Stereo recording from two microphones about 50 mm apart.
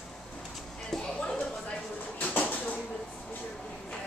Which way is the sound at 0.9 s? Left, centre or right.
Centre.